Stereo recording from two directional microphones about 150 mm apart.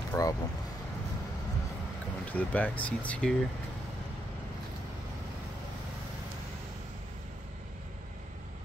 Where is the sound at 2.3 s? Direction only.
10° left (ahead or behind).